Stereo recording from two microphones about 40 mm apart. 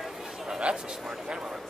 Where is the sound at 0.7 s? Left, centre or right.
Right.